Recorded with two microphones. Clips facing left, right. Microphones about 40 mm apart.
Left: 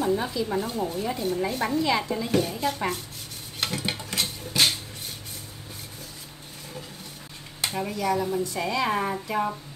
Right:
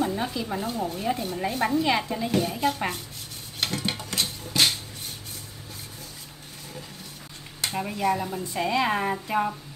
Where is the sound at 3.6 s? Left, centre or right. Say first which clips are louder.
Right 1 dB; centre.